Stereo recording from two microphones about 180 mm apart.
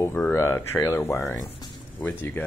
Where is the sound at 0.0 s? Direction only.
10° left (ahead or behind).